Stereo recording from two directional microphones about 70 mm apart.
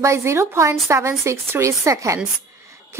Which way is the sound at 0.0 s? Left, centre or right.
Right.